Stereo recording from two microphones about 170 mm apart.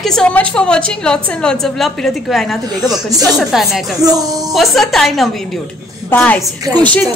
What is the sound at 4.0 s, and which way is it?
Speech, 20° right (ahead or behind).